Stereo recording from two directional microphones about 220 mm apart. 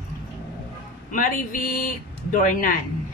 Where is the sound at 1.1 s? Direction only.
40° left (ahead or behind).